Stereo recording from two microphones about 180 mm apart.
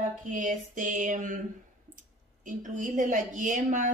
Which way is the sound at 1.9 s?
45° right (ahead or behind).